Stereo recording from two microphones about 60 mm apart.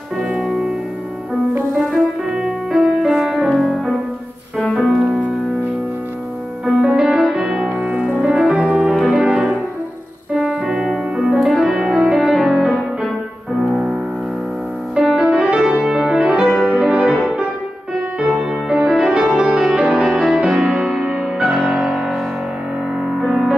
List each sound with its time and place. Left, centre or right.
0.2 s music: centre
2.3 s music: centre
4.9 s music: centre
6.6 s music: centre
7.8 s music: right
11.3 s music: centre
15.0 s music: centre
16.7 s music: centre
18.2 s music: centre
20.3 s music: centre